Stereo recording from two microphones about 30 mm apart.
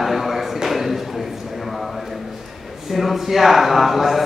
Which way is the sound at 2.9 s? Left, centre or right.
Centre.